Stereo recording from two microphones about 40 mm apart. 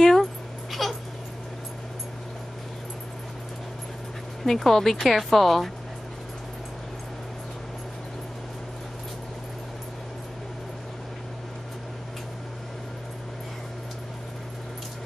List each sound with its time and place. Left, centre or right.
0.0 s cat: centre
4.5 s speech: centre